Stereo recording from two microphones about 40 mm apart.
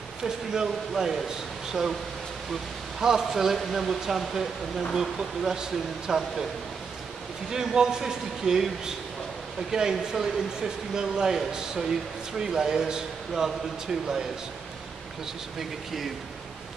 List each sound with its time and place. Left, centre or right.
0.2 s speech: centre
3.0 s speech: centre
7.5 s speech: centre